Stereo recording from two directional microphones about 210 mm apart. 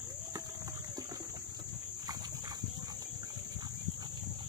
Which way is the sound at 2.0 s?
20° right (ahead or behind).